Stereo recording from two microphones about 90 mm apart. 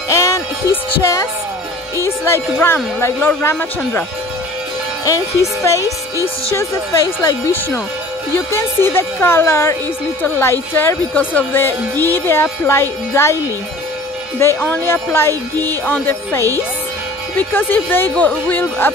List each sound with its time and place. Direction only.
0.1 s music: 35° left (ahead or behind)
2.0 s speech: 30° left (ahead or behind)
5.0 s speech: 35° left (ahead or behind)
14.4 s speech: 25° left (ahead or behind)